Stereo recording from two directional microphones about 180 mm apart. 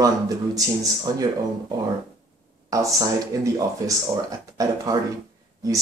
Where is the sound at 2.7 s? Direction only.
20° right (ahead or behind).